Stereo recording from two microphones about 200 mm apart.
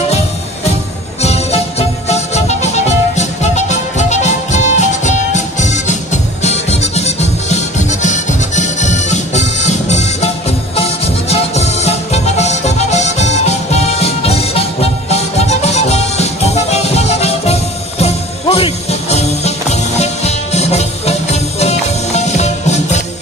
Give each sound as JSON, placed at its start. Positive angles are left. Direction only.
{"t": 1.2, "sound": "music", "side_deg": 30}